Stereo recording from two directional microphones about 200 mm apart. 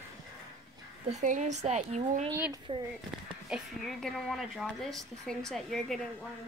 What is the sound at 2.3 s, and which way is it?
Speech, 15° right (ahead or behind).